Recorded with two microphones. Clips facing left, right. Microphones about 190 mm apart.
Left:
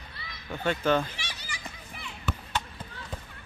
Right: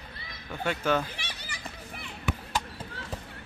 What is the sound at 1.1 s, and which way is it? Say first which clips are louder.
Children playing: even; 55° right (ahead or behind).